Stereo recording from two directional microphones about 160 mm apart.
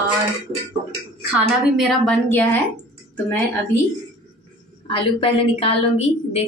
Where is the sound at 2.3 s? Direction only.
10° left (ahead or behind).